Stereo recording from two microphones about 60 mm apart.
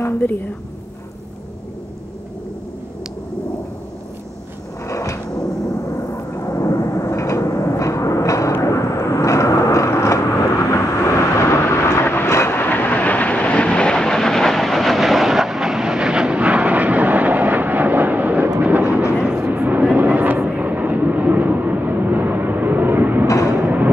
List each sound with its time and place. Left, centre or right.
0.2 s a woman's voice: left
4.8 s a sound: left
5.7 s vehicle: left
12.5 s vehicle: left; by 19.0 s right
19.3 s vehicle: right
23.2 s vehicle: left
23.5 s a sound: right